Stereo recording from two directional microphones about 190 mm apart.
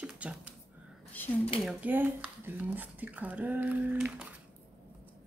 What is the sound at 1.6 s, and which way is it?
Speech, 10° right (ahead or behind).